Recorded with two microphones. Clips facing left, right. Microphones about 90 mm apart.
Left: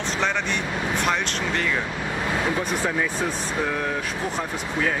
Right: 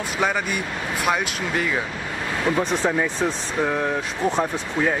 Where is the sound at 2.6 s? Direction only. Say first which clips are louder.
Right 3 dB; 20° right (ahead or behind).